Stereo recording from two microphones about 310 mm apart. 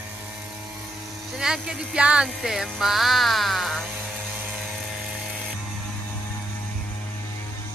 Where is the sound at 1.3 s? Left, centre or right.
Centre.